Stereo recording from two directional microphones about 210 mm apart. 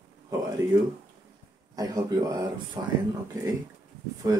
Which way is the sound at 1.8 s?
15° right (ahead or behind).